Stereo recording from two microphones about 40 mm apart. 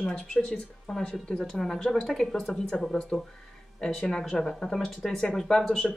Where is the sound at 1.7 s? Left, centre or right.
Centre.